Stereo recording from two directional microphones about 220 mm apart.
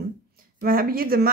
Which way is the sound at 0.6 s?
40° right (ahead or behind).